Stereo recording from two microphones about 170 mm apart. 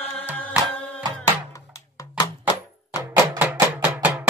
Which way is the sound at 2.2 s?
25° left (ahead or behind).